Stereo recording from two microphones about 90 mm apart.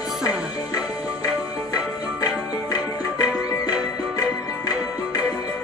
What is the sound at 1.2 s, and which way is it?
Music, 45° left (ahead or behind).